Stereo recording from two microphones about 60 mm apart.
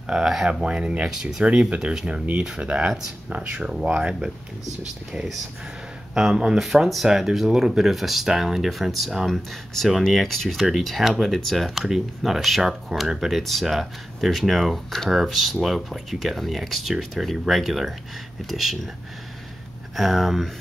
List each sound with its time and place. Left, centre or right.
0.0 s speech: centre
6.1 s speech: centre
20.0 s speech: centre